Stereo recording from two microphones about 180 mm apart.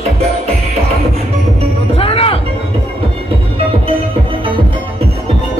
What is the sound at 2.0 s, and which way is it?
Music, 30° left (ahead or behind).